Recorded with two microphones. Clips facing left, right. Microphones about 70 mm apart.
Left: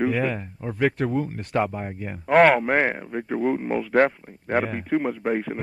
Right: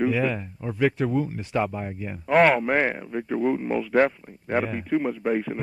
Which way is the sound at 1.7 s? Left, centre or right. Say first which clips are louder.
Even; left.